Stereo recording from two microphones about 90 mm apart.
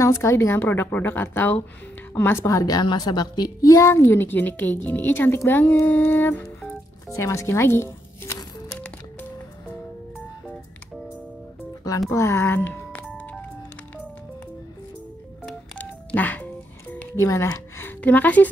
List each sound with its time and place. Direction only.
0.0 s speech: 30° left (ahead or behind)
2.4 s speech: 40° left (ahead or behind); by 6.4 s 20° left (ahead or behind)
7.2 s speech: 35° left (ahead or behind)
12.1 s music: 35° left (ahead or behind); by 13.5 s 15° left (ahead or behind)
15.8 s telephone dialing: 20° left (ahead or behind)
17.2 s speech: 35° left (ahead or behind)
18.0 s a woman's voice: 15° left (ahead or behind)